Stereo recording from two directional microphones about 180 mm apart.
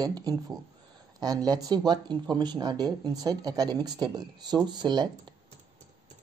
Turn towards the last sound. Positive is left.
turn(degrees=-25)  # may be behind; listen again after turning